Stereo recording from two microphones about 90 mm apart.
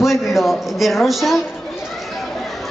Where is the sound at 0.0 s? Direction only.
Centre (ahead or behind).